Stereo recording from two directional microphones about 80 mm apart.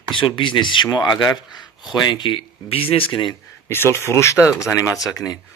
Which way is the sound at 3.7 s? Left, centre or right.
Left.